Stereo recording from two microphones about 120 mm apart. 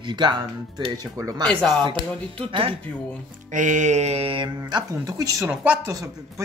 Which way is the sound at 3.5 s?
90° right.